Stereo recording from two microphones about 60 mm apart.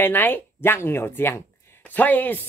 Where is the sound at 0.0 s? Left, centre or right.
Left.